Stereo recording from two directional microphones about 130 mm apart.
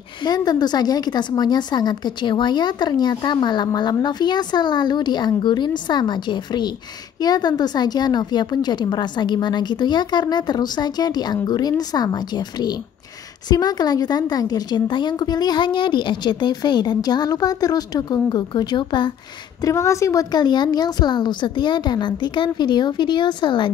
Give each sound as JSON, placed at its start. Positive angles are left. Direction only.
{"t": 0.2, "sound": "speech", "side_deg": 30}
{"t": 19.6, "sound": "speech", "side_deg": 25}